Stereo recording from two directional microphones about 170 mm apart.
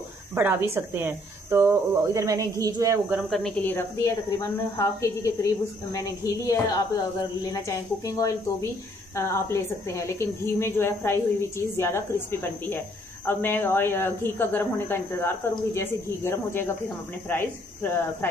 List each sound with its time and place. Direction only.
0.3 s speech: 10° right (ahead or behind)
3.1 s speech: centre (ahead or behind)
3.6 s a woman's voice: 15° left (ahead or behind)